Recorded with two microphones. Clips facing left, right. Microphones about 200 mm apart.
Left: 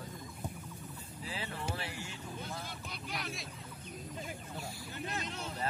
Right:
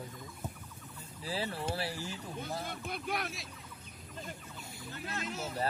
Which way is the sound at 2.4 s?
50° right (ahead or behind).